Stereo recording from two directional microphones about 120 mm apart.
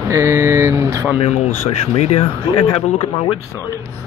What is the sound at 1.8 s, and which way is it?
Speech, 60° left (ahead or behind).